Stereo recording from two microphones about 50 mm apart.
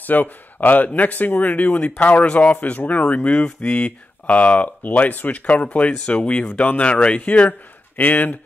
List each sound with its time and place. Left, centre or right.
0.0 s a man's voice: left